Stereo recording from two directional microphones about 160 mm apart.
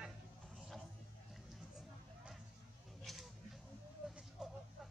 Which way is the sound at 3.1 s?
Centre (ahead or behind).